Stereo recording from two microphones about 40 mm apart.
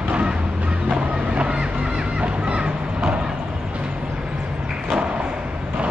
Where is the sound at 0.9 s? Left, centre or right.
Right.